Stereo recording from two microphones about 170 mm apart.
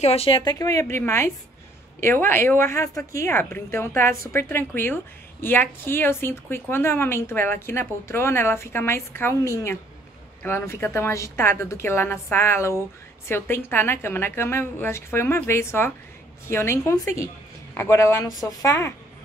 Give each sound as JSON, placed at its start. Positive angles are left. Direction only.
{"t": 0.0, "sound": "a woman's voice", "side_deg": 35}